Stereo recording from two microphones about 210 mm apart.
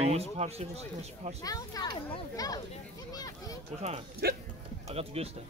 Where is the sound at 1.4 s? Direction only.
15° left (ahead or behind).